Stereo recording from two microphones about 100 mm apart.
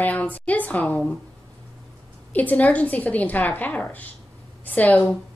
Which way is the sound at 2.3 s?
15° left (ahead or behind).